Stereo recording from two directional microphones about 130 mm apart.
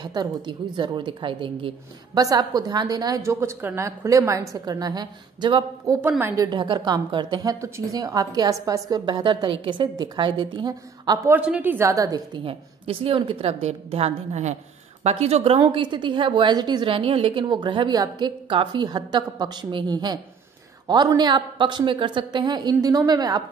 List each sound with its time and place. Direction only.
0.0 s a woman's voice: 35° right (ahead or behind)
2.1 s a woman's voice: 30° right (ahead or behind)
6.0 s a woman's voice: 15° right (ahead or behind)
6.3 s a woman's voice: 30° right (ahead or behind)
11.2 s a woman's voice: 10° right (ahead or behind)
11.9 s a woman's voice: 25° right (ahead or behind)
12.4 s a woman's voice: 45° right (ahead or behind)